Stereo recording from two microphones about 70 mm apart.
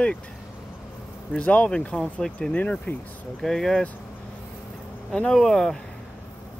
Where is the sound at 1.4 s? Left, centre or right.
Centre.